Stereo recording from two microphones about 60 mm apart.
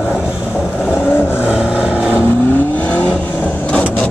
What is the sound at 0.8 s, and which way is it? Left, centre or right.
Vehicle, left.